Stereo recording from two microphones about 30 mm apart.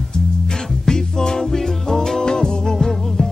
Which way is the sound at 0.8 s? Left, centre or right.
Centre.